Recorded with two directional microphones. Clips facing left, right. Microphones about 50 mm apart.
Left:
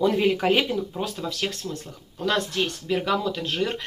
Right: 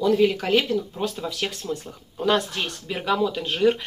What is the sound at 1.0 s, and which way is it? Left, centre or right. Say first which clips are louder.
Speech: right 1 dB; centre.